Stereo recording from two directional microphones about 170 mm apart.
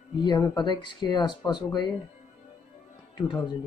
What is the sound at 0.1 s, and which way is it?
Speech, 25° left (ahead or behind).